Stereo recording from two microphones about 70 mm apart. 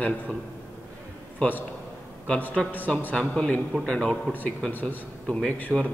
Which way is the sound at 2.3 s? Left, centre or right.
Left.